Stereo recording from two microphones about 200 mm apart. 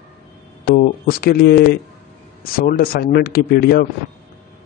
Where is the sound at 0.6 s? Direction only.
50° left (ahead or behind).